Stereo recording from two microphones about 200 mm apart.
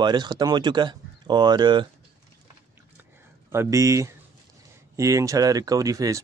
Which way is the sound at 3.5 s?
15° right (ahead or behind).